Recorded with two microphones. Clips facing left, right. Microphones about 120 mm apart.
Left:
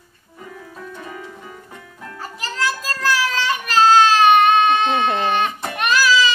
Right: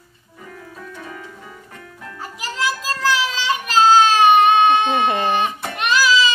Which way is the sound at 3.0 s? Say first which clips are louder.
Even; 20° right (ahead or behind).